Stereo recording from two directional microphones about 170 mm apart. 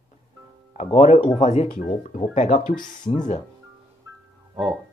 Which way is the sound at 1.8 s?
50° left (ahead or behind).